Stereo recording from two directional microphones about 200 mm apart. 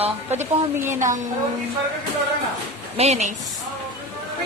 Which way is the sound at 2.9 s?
35° right (ahead or behind).